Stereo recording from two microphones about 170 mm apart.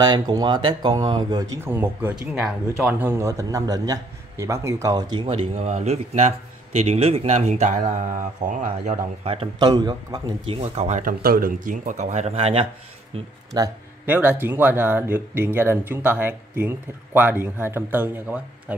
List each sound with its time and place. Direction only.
0.0 s speech: 25° right (ahead or behind)
1.6 s speech: 10° right (ahead or behind); by 9.7 s 35° right (ahead or behind)
9.7 s speech: 25° right (ahead or behind)
13.5 s speech: 25° right (ahead or behind)
14.0 s speech: 10° right (ahead or behind)